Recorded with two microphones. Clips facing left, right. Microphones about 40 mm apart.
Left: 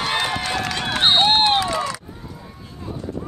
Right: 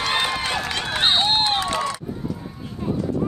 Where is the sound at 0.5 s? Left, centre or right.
Centre.